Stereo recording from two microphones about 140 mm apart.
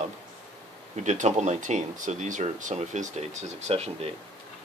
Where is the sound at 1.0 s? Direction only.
55° right (ahead or behind).